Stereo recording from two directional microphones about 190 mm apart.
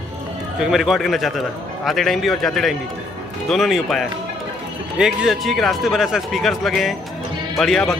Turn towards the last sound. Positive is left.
turn(degrees=0)  # may be behind; listen again after turning